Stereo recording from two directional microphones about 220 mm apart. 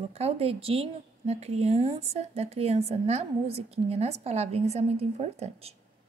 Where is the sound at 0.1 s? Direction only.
30° right (ahead or behind).